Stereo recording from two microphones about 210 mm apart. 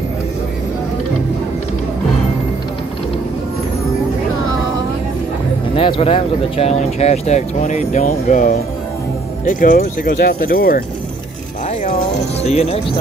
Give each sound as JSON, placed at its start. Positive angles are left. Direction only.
{"t": 5.8, "sound": "speech", "side_deg": 25}
{"t": 11.8, "sound": "speech", "side_deg": 30}